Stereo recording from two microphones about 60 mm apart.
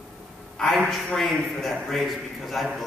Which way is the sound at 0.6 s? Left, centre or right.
Centre.